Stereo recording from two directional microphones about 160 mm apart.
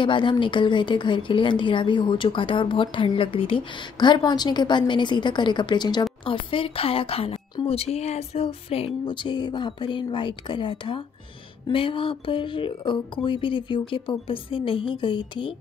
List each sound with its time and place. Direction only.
0.0 s a woman's voice: 30° left (ahead or behind)